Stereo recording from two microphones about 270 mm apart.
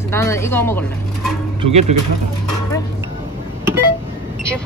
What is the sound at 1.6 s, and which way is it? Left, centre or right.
Speech, right.